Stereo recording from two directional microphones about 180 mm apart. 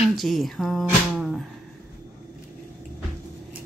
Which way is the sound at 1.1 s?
Centre (ahead or behind).